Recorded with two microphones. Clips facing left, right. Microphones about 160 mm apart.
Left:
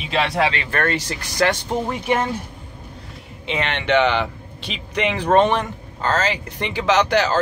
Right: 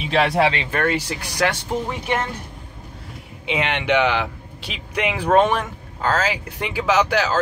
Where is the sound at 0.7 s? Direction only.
10° right (ahead or behind).